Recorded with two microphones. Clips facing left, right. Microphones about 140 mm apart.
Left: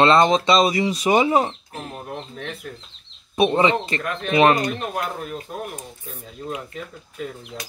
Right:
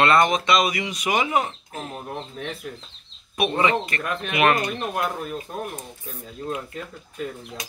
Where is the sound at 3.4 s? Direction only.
25° left (ahead or behind).